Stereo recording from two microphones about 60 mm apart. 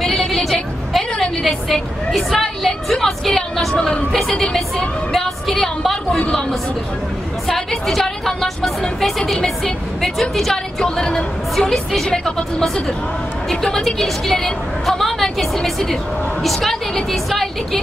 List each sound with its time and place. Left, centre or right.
0.0 s a sound: centre
1.4 s a woman's voice: centre
7.4 s a woman's voice: centre
10.3 s a woman's voice: centre